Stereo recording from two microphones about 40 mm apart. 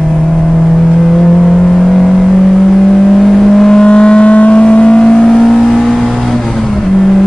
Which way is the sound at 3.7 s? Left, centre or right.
Left.